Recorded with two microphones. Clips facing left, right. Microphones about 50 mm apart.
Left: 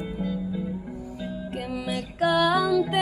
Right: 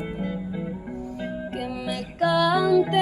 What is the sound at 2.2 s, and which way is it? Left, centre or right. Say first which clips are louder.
Music: right 1 dB; centre.